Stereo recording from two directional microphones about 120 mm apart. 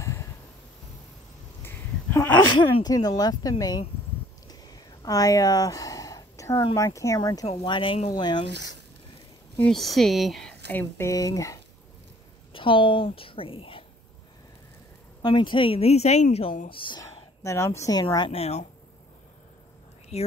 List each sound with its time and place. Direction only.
0.0 s a sound: 25° left (ahead or behind)
1.6 s a sound: 15° left (ahead or behind)
2.8 s speech: 35° left (ahead or behind)
4.5 s a sound: 30° left (ahead or behind)
6.8 s speech: 25° left (ahead or behind)
7.6 s a woman's voice: 45° left (ahead or behind)
8.1 s speech: 40° left (ahead or behind)
9.6 s speech: 5° left (ahead or behind)
10.7 s speech: 20° left (ahead or behind)
12.5 s a woman's voice: 45° left (ahead or behind)
15.2 s a woman's voice: 40° left (ahead or behind)
17.0 s speech: 25° left (ahead or behind)
18.0 s a woman's voice: 45° left (ahead or behind)
18.4 s speech: 65° left (ahead or behind)